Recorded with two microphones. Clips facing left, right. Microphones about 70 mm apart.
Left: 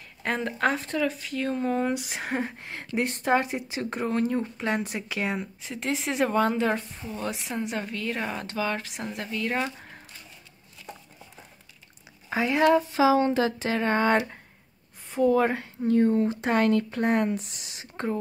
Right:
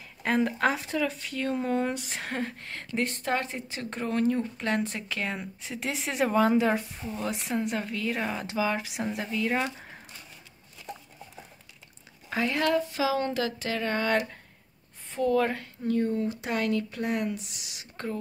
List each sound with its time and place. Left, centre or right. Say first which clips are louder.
0.2 s speech: right 1 dB; centre
9.8 s squish: even; centre
12.3 s speech: left 5 dB; centre
15.0 s speech: left 3 dB; centre
15.9 s speech: left 5 dB; left